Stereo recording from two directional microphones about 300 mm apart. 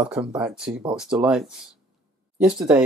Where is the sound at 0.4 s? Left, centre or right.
Centre.